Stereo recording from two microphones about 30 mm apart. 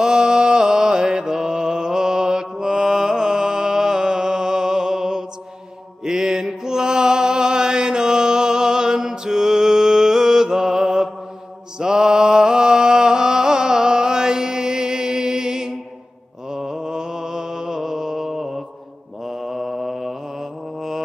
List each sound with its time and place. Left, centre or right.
0.0 s mantra: right; by 21.0 s centre